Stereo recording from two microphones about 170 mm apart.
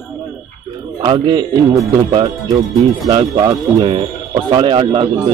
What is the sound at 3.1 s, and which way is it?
Speech, 30° right (ahead or behind).